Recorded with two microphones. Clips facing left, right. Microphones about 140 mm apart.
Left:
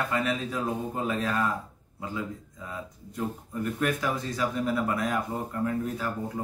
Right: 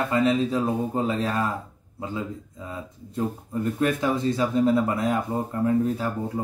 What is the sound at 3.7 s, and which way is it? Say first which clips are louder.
Speech: right 5 dB; 25° right (ahead or behind).